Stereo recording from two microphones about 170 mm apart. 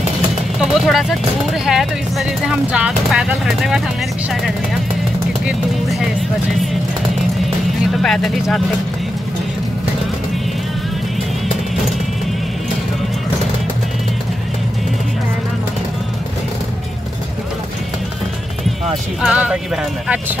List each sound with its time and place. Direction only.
0.6 s speech: centre (ahead or behind)
7.9 s speech: centre (ahead or behind)
19.2 s speech: 5° right (ahead or behind)